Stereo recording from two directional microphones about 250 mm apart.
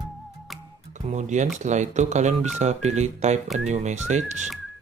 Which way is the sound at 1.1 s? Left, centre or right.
Right.